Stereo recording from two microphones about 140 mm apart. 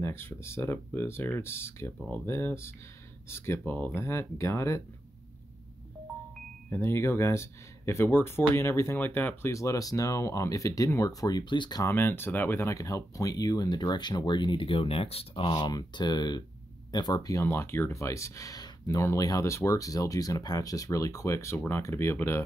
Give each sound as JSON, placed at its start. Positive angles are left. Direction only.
{"t": 0.0, "sound": "speech", "side_deg": 15}
{"t": 6.7, "sound": "speech", "side_deg": 20}
{"t": 11.8, "sound": "speech", "side_deg": 15}